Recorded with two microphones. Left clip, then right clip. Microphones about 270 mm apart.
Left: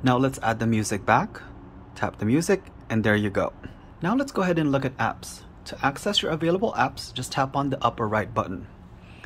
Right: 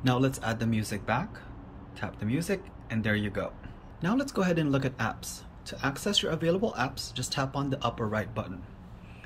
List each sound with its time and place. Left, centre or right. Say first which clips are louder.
0.0 s speech: left 6 dB; centre